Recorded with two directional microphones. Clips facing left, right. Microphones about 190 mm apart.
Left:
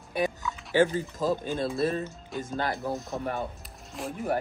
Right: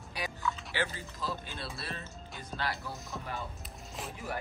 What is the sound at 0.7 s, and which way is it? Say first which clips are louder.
Speech: left 12 dB; 45° left (ahead or behind).